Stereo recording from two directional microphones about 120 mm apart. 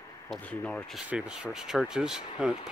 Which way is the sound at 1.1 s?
10° right (ahead or behind).